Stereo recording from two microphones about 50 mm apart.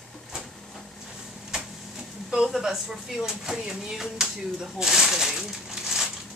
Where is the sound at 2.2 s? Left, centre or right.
Centre.